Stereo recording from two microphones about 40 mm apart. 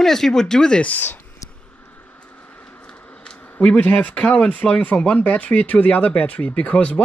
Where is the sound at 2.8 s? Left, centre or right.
Centre.